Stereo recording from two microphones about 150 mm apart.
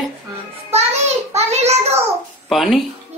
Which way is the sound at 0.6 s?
45° right (ahead or behind).